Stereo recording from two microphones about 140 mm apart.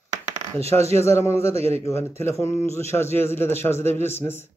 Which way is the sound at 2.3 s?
20° left (ahead or behind).